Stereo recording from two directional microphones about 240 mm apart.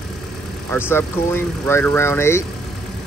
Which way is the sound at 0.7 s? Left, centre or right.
Centre.